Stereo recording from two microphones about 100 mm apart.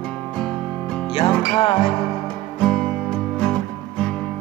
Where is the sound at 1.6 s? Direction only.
75° left (ahead or behind).